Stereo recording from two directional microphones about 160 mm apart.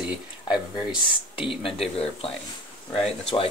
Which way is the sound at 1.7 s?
40° left (ahead or behind).